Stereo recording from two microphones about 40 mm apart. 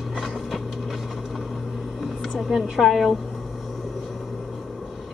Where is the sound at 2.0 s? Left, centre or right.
Centre.